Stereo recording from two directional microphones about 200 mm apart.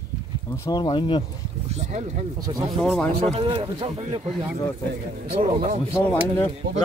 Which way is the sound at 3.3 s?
25° right (ahead or behind).